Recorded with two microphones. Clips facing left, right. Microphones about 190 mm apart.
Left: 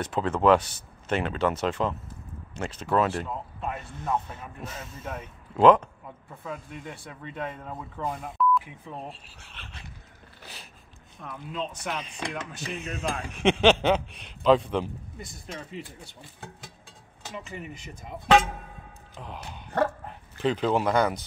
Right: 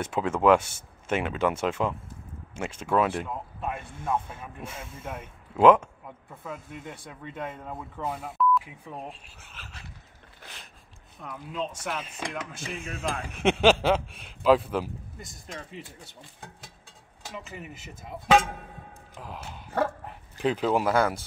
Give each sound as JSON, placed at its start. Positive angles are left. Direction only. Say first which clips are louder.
{"t": 0.0, "sound": "speech", "louder": "even", "side_deg": -10}
{"t": 6.4, "sound": "speech", "louder": "left 1 dB", "side_deg": -25}
{"t": 7.6, "sound": "speech", "louder": "left 1 dB", "side_deg": -5}
{"t": 11.2, "sound": "speech", "louder": "even", "side_deg": -10}
{"t": 17.3, "sound": "speech", "louder": "left 2 dB", "side_deg": 0}